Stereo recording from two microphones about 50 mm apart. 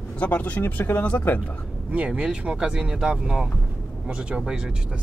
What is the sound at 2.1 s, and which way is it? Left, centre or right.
Speech, centre.